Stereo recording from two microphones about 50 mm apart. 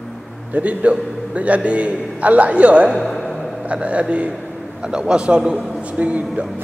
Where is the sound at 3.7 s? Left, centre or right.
Right.